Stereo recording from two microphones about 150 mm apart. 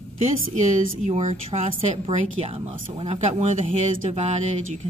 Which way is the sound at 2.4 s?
40° right (ahead or behind).